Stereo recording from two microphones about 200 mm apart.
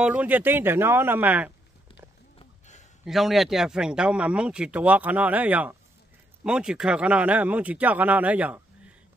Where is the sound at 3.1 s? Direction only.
Centre (ahead or behind).